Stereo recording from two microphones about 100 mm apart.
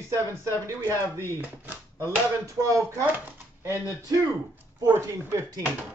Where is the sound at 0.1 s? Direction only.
30° right (ahead or behind).